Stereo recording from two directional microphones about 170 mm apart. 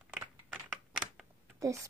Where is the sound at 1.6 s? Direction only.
20° right (ahead or behind).